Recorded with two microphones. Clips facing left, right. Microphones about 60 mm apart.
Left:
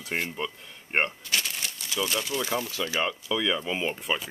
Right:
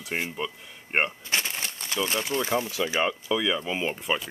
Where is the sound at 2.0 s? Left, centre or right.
Right; by 4.2 s centre.